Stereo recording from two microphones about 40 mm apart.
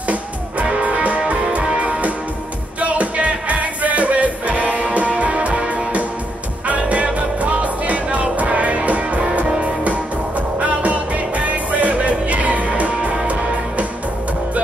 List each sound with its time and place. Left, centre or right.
0.1 s music: right